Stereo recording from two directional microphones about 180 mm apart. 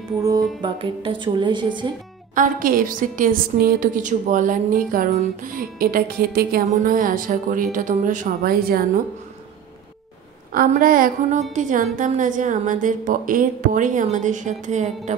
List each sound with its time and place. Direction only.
0.2 s speech: 20° right (ahead or behind)
2.3 s a woman's voice: 50° right (ahead or behind)
10.5 s a woman's voice: 50° right (ahead or behind)